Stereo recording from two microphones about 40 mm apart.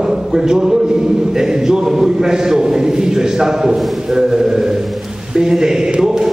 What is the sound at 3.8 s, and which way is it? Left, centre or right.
Speech, centre.